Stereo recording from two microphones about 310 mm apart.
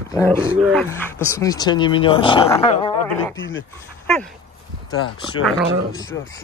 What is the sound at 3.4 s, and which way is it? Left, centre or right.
Speech, left.